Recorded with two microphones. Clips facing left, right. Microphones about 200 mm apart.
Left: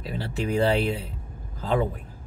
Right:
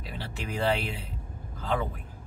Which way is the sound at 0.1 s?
40° left (ahead or behind).